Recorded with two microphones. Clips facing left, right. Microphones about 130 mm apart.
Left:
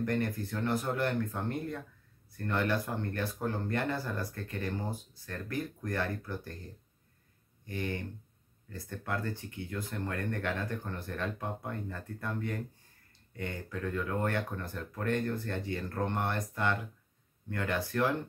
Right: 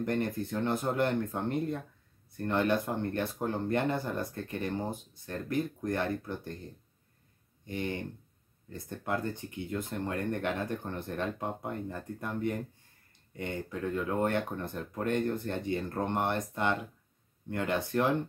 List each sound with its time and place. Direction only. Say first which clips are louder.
0.0 s speech: right 1 dB; 20° right (ahead or behind)